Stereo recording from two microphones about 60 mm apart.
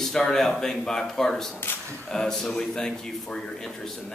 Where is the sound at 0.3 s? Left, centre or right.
Centre.